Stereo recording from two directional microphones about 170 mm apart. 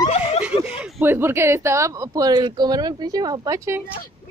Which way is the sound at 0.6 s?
5° right (ahead or behind).